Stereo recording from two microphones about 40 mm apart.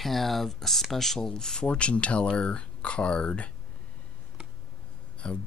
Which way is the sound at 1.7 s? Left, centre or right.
Left.